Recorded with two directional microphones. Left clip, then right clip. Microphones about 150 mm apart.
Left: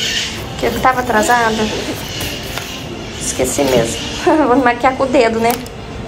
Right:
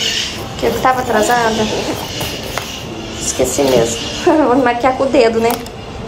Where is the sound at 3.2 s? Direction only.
10° right (ahead or behind).